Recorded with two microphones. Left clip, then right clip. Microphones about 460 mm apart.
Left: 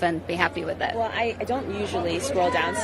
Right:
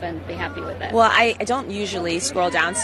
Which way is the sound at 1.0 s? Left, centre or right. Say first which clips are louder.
Right 10 dB; right.